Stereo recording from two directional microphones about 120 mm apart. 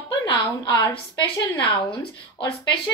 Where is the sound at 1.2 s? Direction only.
40° left (ahead or behind).